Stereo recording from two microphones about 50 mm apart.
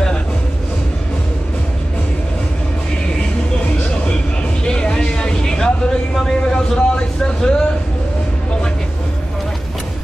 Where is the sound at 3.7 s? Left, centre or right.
Left.